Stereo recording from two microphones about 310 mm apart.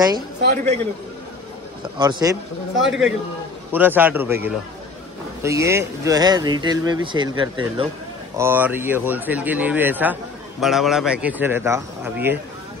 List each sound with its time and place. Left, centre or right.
0.4 s a man's voice: right
2.0 s speech: centre
2.8 s speech: centre